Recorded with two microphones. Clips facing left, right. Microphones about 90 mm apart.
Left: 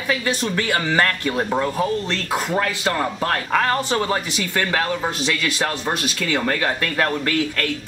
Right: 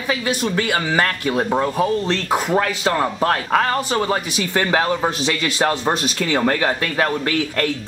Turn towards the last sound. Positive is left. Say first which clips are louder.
# right 2 dB
turn(degrees=-20)  # may be behind; listen again after turning